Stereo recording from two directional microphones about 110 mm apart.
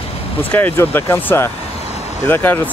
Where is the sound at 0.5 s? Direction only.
15° left (ahead or behind).